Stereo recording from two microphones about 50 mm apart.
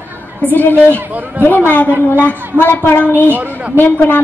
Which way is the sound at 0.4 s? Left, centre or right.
Left.